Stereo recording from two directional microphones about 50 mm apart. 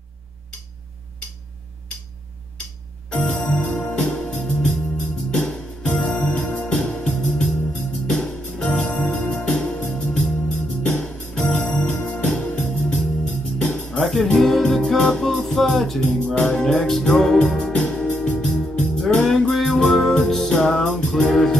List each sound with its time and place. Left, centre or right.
3.1 s organ: left
3.7 s music: left
9.5 s music: left
14.0 s music: centre
16.4 s music: centre
17.6 s music: left